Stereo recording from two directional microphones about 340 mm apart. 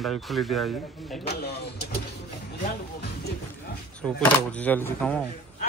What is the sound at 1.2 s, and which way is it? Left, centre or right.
Speech, left.